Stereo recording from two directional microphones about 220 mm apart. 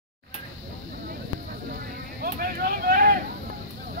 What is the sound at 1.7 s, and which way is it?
Vehicle, 45° right (ahead or behind).